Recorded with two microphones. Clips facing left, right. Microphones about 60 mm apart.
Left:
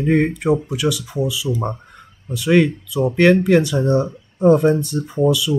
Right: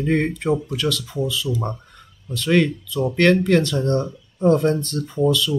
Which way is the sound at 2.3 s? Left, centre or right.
Centre.